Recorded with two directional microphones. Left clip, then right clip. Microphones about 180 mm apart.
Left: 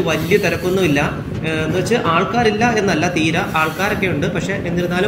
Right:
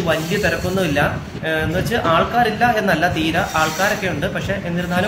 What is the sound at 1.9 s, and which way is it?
Speech, 5° left (ahead or behind).